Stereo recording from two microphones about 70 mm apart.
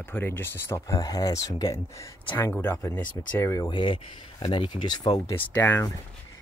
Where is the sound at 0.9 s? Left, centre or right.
Left.